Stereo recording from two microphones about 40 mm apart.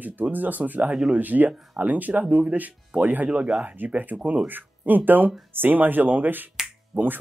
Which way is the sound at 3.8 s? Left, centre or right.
Right.